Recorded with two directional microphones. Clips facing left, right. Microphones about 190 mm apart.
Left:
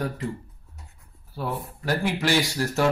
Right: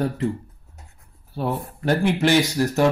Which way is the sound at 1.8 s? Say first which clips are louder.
Right 6 dB; 20° right (ahead or behind).